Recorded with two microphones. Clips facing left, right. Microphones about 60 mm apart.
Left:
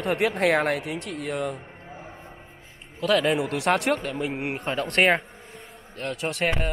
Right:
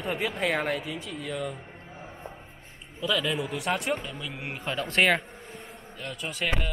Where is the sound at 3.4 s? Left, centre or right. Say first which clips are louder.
Left 6 dB; left.